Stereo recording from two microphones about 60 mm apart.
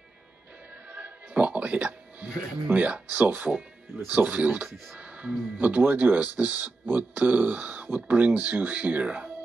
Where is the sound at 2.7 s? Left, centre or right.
Right.